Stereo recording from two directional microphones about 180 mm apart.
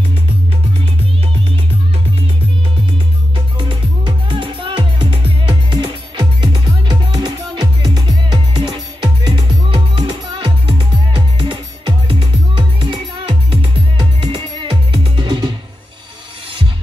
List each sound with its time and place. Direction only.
3.3 s music: 25° right (ahead or behind)